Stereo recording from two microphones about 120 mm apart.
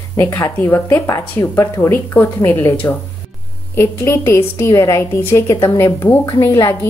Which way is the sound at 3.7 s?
20° left (ahead or behind).